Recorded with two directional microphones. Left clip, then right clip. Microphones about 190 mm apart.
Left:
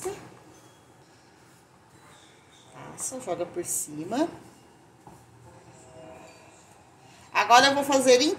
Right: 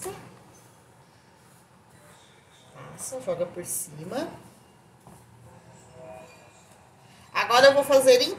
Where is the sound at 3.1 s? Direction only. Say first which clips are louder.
Right 2 dB; 45° left (ahead or behind).